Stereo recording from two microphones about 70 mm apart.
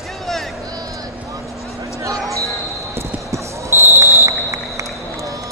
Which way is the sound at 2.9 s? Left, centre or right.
Right.